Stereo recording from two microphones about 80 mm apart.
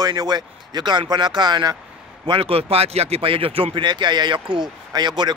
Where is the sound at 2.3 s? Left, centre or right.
Right.